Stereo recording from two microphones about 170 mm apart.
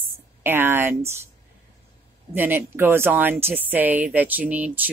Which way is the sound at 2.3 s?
10° right (ahead or behind).